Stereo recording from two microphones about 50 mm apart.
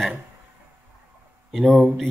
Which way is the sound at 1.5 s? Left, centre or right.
Centre.